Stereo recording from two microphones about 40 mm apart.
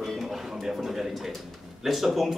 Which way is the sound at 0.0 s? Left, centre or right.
Centre.